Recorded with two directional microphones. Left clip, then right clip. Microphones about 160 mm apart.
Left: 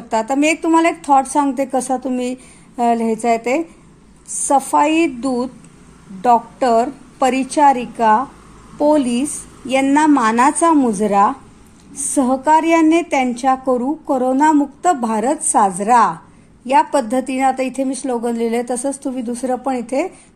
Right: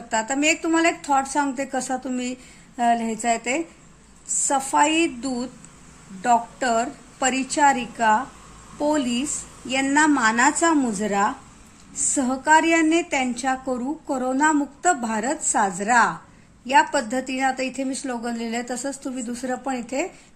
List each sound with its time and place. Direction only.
0.1 s a woman's voice: 25° left (ahead or behind)